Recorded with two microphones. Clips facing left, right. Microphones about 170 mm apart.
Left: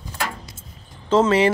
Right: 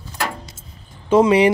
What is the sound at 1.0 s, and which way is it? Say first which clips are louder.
Speech: right 3 dB; 10° right (ahead or behind).